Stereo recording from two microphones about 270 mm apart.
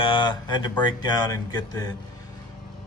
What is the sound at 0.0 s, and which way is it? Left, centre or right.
Speech, centre.